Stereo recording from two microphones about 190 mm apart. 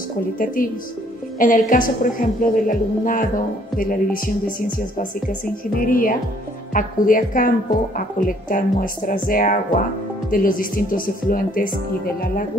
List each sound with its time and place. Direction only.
1.4 s a woman's voice: 45° left (ahead or behind)